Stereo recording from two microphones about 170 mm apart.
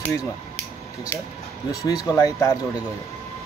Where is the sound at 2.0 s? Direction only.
20° left (ahead or behind).